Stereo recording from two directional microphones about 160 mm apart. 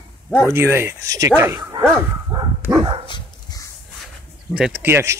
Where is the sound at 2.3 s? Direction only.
25° right (ahead or behind).